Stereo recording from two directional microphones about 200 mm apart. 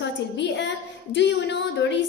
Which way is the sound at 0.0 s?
60° left (ahead or behind).